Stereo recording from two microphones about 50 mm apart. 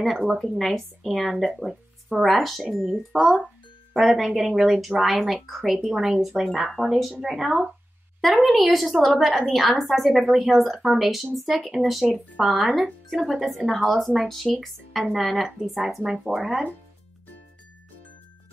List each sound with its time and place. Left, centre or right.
0.0 s speech: centre
0.6 s speech: centre
16.3 s speech: right